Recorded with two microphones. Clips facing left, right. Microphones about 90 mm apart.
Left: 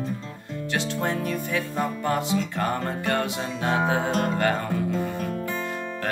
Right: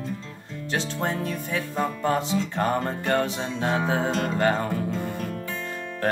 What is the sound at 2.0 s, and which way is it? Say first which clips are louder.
Music: right 1 dB; 25° right (ahead or behind).